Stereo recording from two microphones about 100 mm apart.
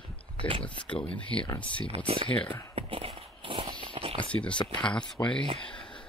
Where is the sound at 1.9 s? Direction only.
85° right.